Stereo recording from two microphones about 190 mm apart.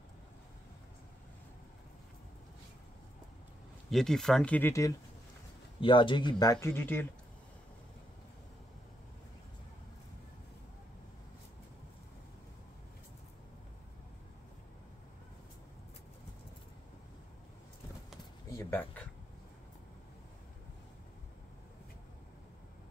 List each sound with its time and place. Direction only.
3.9 s speech: centre (ahead or behind)
5.8 s speech: 25° left (ahead or behind); by 7.1 s 10° left (ahead or behind)
18.5 s a sound: 15° left (ahead or behind)